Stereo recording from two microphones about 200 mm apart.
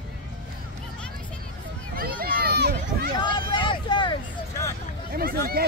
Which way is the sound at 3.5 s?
25° left (ahead or behind).